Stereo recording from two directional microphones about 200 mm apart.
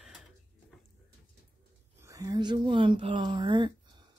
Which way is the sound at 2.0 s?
15° right (ahead or behind).